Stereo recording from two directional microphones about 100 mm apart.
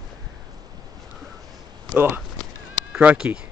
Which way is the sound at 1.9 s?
20° right (ahead or behind).